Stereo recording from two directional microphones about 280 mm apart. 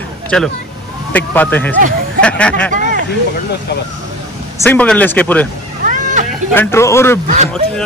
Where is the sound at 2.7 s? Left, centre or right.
Right.